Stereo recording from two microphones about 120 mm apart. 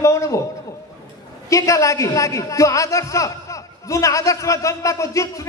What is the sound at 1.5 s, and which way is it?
A man's voice, 25° left (ahead or behind).